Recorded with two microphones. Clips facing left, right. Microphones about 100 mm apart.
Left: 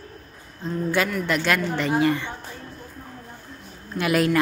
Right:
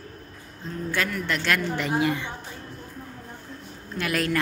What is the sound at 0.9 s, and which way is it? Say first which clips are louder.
Speech: left 4 dB; 10° left (ahead or behind).